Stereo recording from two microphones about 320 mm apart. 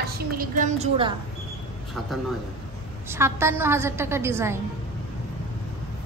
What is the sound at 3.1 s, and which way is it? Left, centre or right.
A woman's voice, centre.